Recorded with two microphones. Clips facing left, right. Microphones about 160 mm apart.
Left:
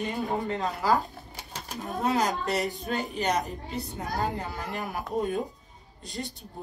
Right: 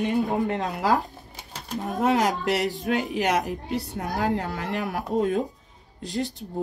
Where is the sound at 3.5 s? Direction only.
70° right (ahead or behind).